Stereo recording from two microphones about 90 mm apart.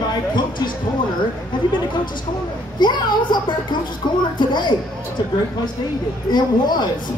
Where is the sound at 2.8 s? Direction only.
55° left (ahead or behind).